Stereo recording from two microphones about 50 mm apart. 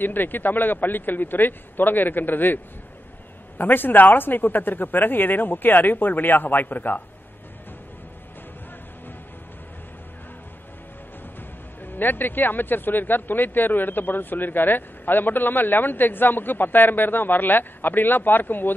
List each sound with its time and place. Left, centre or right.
0.0 s speech: left
11.8 s speech: left